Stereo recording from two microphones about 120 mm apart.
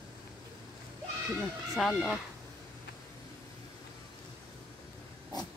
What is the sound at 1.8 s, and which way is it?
Speech, centre (ahead or behind).